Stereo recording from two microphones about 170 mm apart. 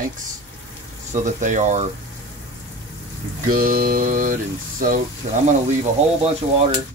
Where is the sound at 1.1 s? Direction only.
45° right (ahead or behind).